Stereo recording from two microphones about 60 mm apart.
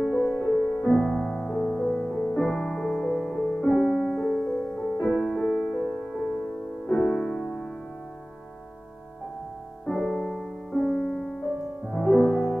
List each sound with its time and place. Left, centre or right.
0.0 s music: centre
0.4 s music: left
1.2 s music: centre
2.2 s music: left
2.7 s music: centre
5.6 s music: centre
6.9 s music: centre
9.8 s music: centre